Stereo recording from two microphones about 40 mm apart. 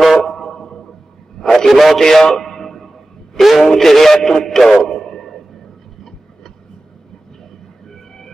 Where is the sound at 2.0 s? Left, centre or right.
Centre.